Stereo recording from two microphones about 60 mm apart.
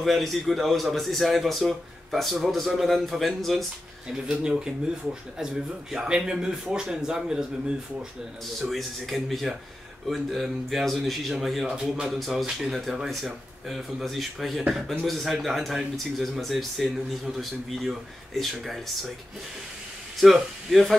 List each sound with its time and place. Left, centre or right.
0.0 s a man's voice: centre
4.3 s a man's voice: centre
8.6 s a man's voice: centre
20.2 s speech: centre